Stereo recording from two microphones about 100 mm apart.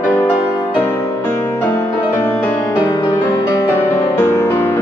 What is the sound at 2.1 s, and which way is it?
Music, 20° left (ahead or behind).